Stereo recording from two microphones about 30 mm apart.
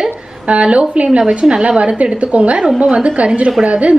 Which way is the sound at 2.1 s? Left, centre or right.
Right.